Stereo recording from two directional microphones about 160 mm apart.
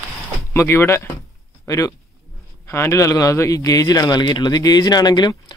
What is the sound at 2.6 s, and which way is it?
A man's voice, 15° left (ahead or behind).